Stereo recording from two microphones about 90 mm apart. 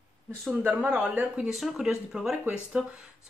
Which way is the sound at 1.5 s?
Centre (ahead or behind).